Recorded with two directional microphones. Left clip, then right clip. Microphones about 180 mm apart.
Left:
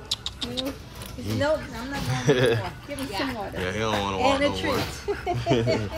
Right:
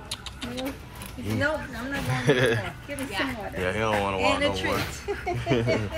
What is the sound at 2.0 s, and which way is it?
Speech, 20° left (ahead or behind).